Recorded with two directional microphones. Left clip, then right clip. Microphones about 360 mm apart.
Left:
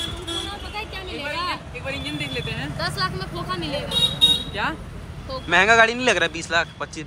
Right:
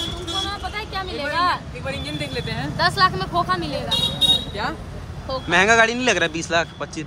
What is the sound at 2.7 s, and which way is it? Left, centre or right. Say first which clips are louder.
Speech: right 9 dB; centre.